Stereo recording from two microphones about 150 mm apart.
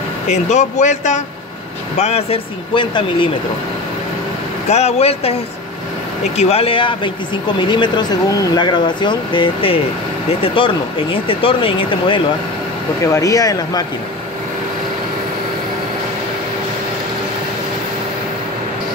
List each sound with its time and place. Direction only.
0.3 s speech: 50° left (ahead or behind); by 3.3 s 35° left (ahead or behind)
4.6 s speech: 45° left (ahead or behind)
6.3 s speech: 45° left (ahead or behind)
13.0 s speech: 20° left (ahead or behind)